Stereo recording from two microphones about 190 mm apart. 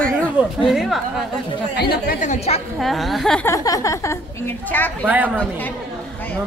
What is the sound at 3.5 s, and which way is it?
A woman's voice, 15° left (ahead or behind).